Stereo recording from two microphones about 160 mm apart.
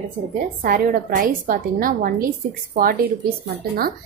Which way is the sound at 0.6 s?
60° right (ahead or behind).